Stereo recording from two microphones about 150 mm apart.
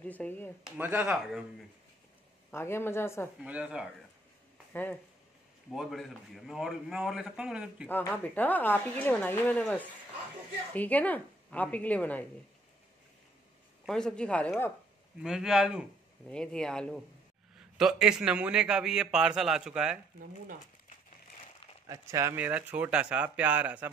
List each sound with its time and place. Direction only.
0.0 s a woman's voice: 10° left (ahead or behind)
0.7 s speech: 10° right (ahead or behind)
2.5 s a woman's voice: 15° left (ahead or behind)
3.3 s speech: 10° right (ahead or behind)
5.7 s a man's voice: centre (ahead or behind)
7.9 s a woman's voice: 10° left (ahead or behind)
13.8 s a man's voice: 5° left (ahead or behind)
15.2 s a man's voice: 5° right (ahead or behind)
21.8 s speech: 20° right (ahead or behind)